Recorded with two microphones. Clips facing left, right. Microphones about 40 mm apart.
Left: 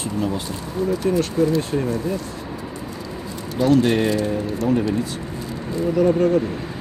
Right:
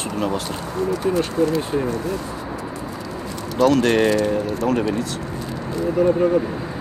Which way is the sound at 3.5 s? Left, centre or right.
Right.